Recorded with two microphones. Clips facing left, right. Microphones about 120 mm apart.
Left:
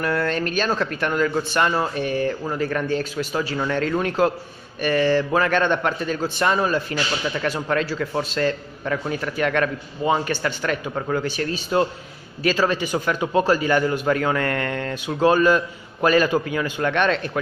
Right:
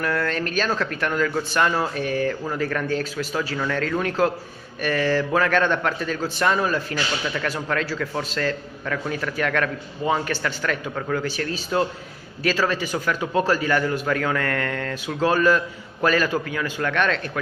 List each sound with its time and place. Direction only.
0.0 s a man's voice: 15° left (ahead or behind)
2.0 s a man's voice: 15° left (ahead or behind)
4.8 s a sound: 20° left (ahead or behind)
5.3 s a man's voice: 10° left (ahead or behind)
7.4 s a man's voice: 15° left (ahead or behind)
11.7 s a man's voice: 10° left (ahead or behind)
13.2 s a man's voice: 5° left (ahead or behind)